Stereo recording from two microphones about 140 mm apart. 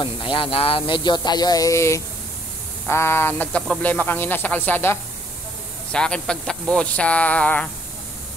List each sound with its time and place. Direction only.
0.0 s speech: 35° left (ahead or behind); by 7.7 s 10° left (ahead or behind)